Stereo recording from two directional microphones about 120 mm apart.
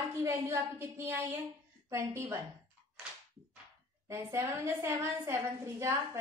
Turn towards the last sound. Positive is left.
turn(degrees=-25)  # may be behind; listen again after turning